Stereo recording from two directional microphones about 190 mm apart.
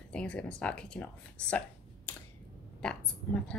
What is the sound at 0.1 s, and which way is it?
Speech, 5° left (ahead or behind).